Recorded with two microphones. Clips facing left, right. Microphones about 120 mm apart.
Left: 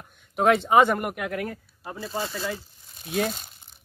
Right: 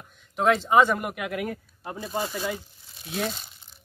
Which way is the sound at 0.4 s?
60° left (ahead or behind).